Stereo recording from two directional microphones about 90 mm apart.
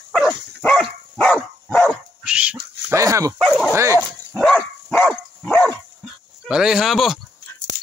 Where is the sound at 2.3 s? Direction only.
15° right (ahead or behind).